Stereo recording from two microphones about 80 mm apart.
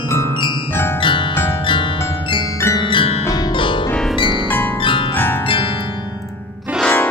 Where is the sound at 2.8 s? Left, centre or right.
Left.